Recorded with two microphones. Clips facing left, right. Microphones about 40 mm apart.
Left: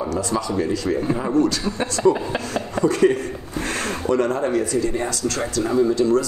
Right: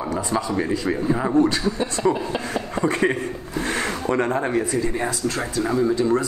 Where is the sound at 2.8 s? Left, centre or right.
Right; by 5.8 s centre.